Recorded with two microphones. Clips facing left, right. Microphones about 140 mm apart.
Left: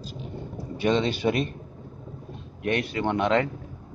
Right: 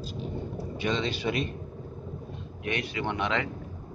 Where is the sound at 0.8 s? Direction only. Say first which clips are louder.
Left 6 dB; 50° left (ahead or behind).